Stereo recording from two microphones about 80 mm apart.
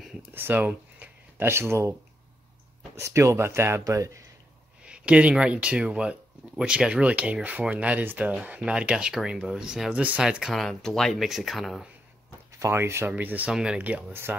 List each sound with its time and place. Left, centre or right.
0.3 s speech: right
3.0 s speech: right
4.8 s speech: centre
12.5 s speech: right
13.1 s speech: right
13.5 s speech: centre